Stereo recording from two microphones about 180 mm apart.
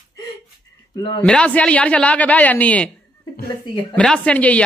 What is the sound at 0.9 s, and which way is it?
Speech, 25° left (ahead or behind).